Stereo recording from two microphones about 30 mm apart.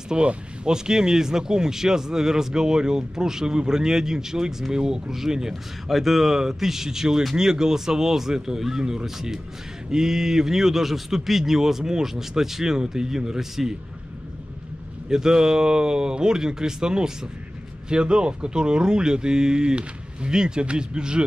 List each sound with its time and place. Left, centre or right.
0.1 s speech: right
0.7 s speech: right
5.5 s speech: centre; by 13.4 s right
13.4 s speech: centre
15.0 s speech: centre